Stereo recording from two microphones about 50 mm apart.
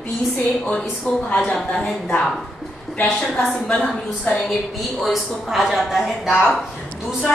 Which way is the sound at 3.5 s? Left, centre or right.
Centre.